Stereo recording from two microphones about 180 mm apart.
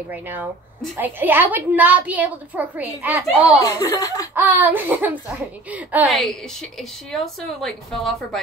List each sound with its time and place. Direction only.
0.1 s a woman's voice: 10° right (ahead or behind)
3.5 s speech: 20° left (ahead or behind)
4.4 s a woman's voice: 10° right (ahead or behind)